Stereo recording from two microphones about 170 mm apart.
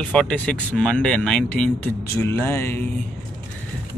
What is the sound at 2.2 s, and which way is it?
Music, 15° left (ahead or behind).